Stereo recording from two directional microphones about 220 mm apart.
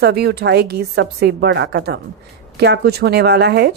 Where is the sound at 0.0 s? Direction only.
45° right (ahead or behind).